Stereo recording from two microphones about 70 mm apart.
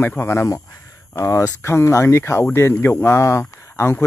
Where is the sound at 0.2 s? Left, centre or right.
Left.